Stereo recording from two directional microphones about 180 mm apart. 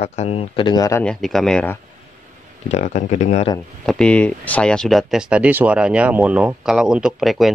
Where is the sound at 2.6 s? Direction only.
40° left (ahead or behind).